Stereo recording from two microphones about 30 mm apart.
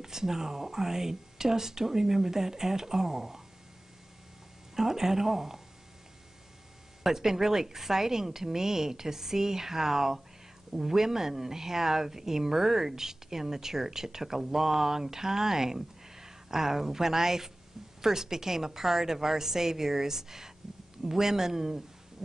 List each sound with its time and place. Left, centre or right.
0.0 s a woman's voice: centre
4.7 s a woman's voice: centre
7.0 s a woman's voice: centre